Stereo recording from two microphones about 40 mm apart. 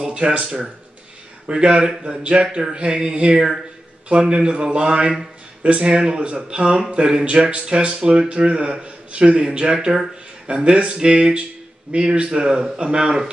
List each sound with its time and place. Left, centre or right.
0.1 s speech: right
4.1 s speech: right